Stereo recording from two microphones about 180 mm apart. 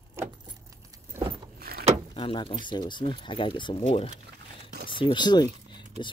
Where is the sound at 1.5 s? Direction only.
55° right (ahead or behind).